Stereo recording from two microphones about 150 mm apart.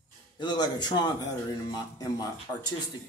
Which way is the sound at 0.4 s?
30° left (ahead or behind).